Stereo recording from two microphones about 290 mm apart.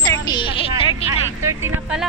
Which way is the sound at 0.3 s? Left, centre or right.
Centre.